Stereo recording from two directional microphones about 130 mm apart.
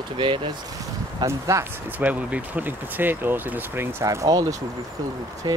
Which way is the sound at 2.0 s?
10° right (ahead or behind).